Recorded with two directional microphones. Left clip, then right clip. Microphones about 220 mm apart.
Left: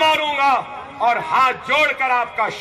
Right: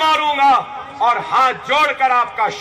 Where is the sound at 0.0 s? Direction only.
45° left (ahead or behind).